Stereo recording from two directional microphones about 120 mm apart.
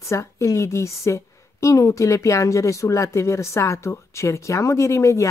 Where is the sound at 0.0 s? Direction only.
25° left (ahead or behind).